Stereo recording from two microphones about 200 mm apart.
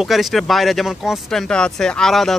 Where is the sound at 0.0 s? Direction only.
Centre (ahead or behind).